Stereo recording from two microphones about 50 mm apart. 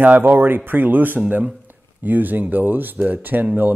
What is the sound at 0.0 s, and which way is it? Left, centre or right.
Speech, right.